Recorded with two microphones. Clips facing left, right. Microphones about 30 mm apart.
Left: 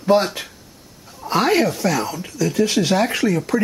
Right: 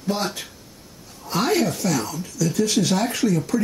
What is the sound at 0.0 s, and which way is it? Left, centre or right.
Speech, left.